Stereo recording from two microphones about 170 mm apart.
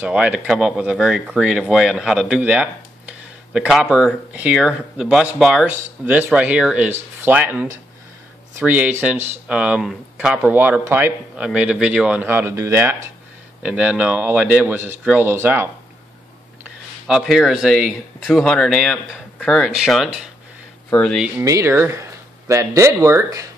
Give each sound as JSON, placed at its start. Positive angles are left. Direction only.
{"t": 0.0, "sound": "speech", "side_deg": -5}
{"t": 17.1, "sound": "speech", "side_deg": 0}
{"t": 21.2, "sound": "speech", "side_deg": -15}